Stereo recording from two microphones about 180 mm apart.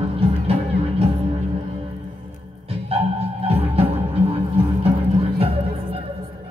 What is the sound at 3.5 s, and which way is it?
Music, 35° right (ahead or behind).